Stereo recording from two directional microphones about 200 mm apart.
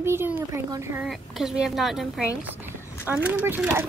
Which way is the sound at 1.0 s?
Centre (ahead or behind).